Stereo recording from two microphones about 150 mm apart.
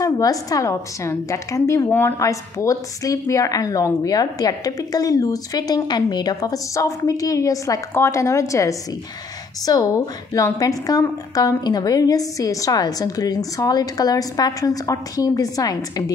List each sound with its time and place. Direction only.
0.0 s a woman's voice: 25° left (ahead or behind)